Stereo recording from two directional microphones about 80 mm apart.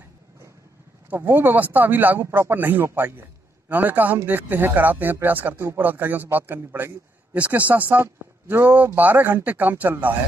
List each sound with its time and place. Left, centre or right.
1.1 s speech: right